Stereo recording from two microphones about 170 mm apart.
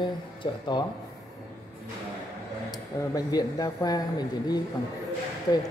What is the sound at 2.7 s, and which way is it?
Speech, 20° left (ahead or behind).